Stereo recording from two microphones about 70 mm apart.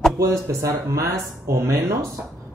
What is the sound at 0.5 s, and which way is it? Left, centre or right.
Speech, right.